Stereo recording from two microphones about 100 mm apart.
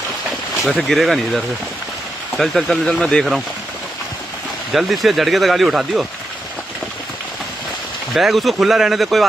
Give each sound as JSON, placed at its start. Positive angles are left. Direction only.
{"t": 0.7, "sound": "speech", "side_deg": 0}
{"t": 4.7, "sound": "speech", "side_deg": 0}
{"t": 8.1, "sound": "speech", "side_deg": 0}